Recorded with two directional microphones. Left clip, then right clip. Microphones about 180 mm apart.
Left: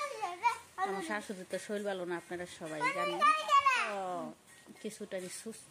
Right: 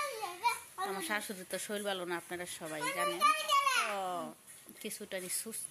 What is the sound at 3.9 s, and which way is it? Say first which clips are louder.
Babbling: right 1 dB; 10° left (ahead or behind).